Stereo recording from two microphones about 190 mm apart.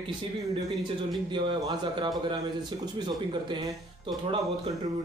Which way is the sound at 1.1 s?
25° right (ahead or behind).